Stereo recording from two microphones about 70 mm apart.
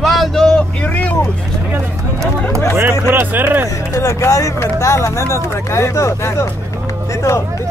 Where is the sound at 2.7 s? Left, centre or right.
Right.